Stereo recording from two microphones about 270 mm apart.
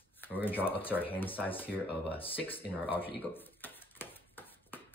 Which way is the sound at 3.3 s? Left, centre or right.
Centre.